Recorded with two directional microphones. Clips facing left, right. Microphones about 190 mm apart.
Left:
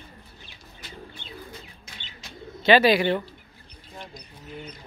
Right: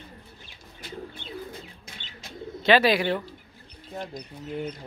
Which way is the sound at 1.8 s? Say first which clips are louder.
Right 1 dB; 50° right (ahead or behind).